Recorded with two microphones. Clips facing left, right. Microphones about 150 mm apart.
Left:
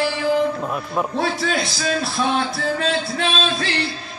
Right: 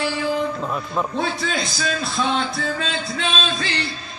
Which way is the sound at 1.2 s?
55° left (ahead or behind).